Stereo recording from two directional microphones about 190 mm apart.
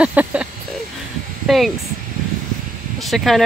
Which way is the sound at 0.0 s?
5° right (ahead or behind).